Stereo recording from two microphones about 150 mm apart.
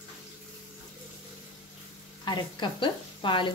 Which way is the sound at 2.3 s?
30° left (ahead or behind).